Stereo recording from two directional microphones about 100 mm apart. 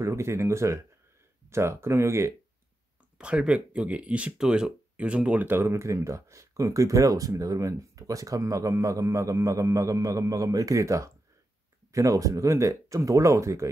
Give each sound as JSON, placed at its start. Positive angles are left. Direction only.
{"t": 0.0, "sound": "speech", "side_deg": -30}
{"t": 3.2, "sound": "speech", "side_deg": -10}